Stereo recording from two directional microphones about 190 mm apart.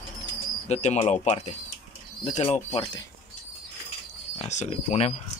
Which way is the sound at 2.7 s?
25° left (ahead or behind).